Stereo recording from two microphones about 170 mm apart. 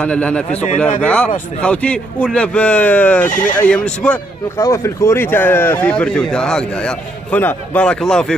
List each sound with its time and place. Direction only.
0.0 s speech: 5° left (ahead or behind)
3.3 s speech: 50° left (ahead or behind)
3.5 s speech: 5° left (ahead or behind)
4.6 s speech: 15° left (ahead or behind)